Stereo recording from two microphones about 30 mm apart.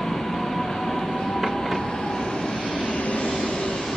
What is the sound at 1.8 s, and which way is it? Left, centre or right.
Vehicle, centre.